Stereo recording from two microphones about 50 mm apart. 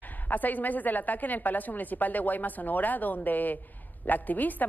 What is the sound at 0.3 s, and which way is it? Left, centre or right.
Speech, left.